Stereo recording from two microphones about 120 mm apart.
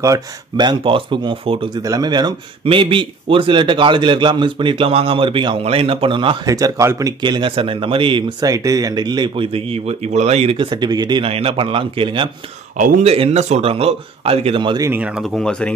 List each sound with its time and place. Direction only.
0.0 s speech: 35° right (ahead or behind); by 1.7 s 50° right (ahead or behind)
1.8 s speech: 30° right (ahead or behind)
2.6 s a man's voice: 45° right (ahead or behind)
6.4 s speech: 30° right (ahead or behind)
7.2 s a man's voice: 40° right (ahead or behind)
8.5 s speech: 30° right (ahead or behind)
9.5 s a man's voice: 55° right (ahead or behind); by 11.2 s 35° right (ahead or behind)
11.2 s a man's voice: 50° right (ahead or behind)
12.7 s speech: 90° right
13.1 s speech: 60° right (ahead or behind); by 14.8 s 45° right (ahead or behind)
15.0 s speech: 5° right (ahead or behind)